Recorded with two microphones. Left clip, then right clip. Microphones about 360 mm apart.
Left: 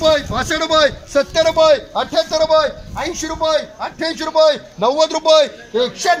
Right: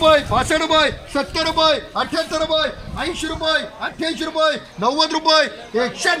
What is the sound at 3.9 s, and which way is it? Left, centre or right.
A man's voice, centre.